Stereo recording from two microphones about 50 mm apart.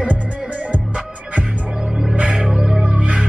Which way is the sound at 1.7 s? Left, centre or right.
Centre.